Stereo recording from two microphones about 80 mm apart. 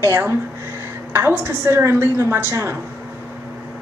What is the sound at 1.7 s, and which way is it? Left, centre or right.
Speech, right.